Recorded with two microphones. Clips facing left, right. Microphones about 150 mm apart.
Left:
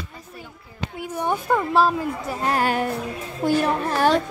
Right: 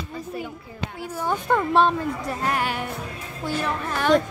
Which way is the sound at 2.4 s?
40° left (ahead or behind).